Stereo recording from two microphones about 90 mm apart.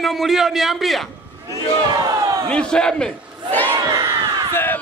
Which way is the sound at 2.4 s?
10° left (ahead or behind).